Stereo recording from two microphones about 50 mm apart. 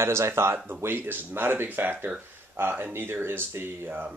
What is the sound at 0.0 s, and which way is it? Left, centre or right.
Speech, right.